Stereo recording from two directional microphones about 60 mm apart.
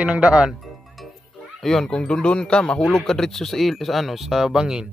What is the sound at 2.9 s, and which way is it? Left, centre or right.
Speech, centre.